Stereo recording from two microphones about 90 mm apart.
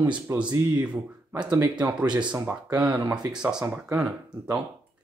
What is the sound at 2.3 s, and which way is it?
Speech, 20° right (ahead or behind).